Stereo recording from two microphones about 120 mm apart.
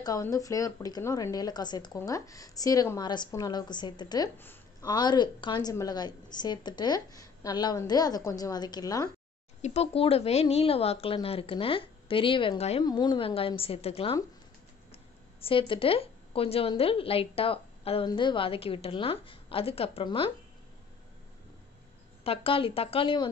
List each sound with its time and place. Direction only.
0.0 s a woman's voice: 30° left (ahead or behind)
9.6 s a woman's voice: 55° left (ahead or behind)
12.8 s speech: 35° left (ahead or behind)
13.2 s a woman's voice: 50° left (ahead or behind)
15.4 s a woman's voice: 45° left (ahead or behind)
22.2 s a woman's voice: 50° left (ahead or behind)